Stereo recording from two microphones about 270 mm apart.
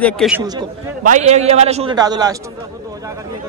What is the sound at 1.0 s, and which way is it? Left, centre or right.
A man's voice, right.